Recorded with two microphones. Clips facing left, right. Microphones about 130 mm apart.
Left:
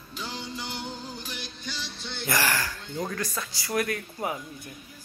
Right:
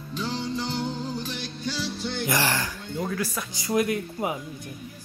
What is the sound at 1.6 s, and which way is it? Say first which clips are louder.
Music: right 12 dB; 10° right (ahead or behind).